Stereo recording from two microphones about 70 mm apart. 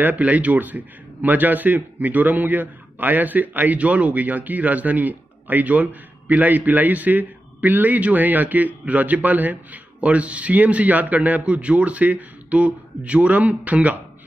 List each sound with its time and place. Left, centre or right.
0.0 s a man's voice: right